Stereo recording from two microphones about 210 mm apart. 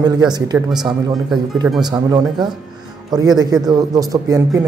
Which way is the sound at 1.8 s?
15° right (ahead or behind).